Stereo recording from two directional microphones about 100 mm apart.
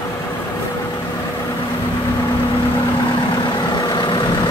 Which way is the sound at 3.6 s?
50° left (ahead or behind).